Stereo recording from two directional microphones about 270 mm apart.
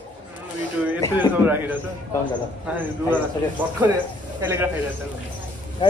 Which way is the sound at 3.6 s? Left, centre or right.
Centre.